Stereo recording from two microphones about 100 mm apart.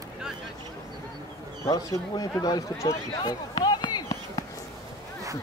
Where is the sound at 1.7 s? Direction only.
35° left (ahead or behind).